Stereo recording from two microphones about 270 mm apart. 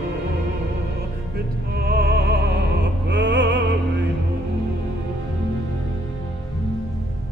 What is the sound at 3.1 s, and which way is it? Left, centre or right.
Opera, right.